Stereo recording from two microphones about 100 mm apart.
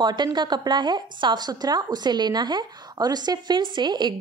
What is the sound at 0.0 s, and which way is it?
A woman's voice, 45° right (ahead or behind).